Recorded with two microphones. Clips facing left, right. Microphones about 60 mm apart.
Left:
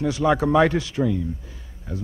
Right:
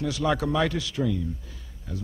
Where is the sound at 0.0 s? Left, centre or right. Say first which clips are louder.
Left 5 dB; left.